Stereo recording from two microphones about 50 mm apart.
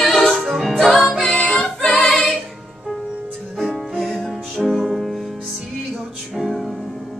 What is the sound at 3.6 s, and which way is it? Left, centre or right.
Music, centre.